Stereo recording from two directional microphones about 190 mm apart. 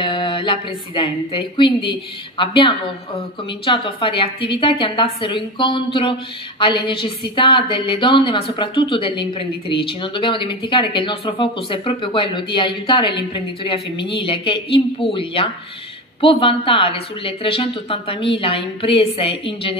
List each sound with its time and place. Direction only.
0.0 s a woman's voice: 25° left (ahead or behind)